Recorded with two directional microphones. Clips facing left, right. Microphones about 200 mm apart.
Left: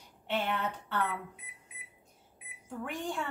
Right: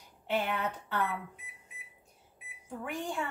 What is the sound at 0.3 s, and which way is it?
Speech, 10° right (ahead or behind).